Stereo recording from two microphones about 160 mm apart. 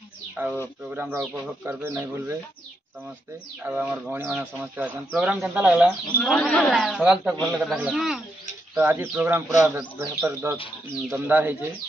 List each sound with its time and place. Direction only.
0.4 s speech: 10° right (ahead or behind)
3.6 s speech: 10° right (ahead or behind)
6.1 s a man's voice: 5° left (ahead or behind)
8.7 s speech: 15° right (ahead or behind)